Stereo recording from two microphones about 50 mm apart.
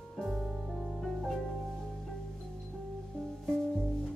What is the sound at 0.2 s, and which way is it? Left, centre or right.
Music, centre.